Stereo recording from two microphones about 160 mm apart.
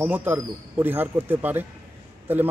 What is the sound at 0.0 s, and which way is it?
Speech, 10° right (ahead or behind).